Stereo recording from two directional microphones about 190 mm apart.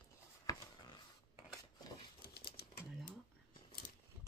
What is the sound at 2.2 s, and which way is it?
Typewriter, 55° left (ahead or behind).